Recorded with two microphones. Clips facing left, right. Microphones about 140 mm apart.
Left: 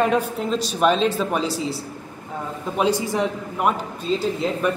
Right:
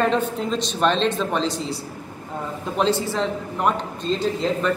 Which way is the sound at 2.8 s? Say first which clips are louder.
Left 1 dB; 15° left (ahead or behind).